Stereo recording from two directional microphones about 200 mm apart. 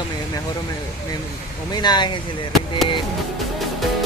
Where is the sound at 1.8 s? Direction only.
20° left (ahead or behind).